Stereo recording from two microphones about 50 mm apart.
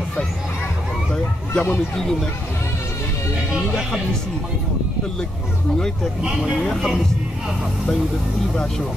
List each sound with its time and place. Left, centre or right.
1.1 s speech: centre